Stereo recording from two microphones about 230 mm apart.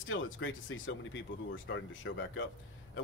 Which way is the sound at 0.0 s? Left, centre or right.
Left.